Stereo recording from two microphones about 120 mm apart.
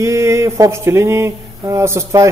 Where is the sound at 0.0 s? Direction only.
25° right (ahead or behind).